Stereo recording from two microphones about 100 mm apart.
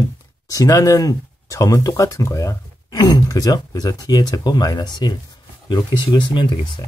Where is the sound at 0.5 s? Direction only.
35° left (ahead or behind); by 6.9 s 50° left (ahead or behind).